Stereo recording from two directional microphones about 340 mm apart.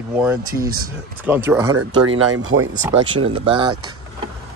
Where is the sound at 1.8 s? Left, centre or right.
Right.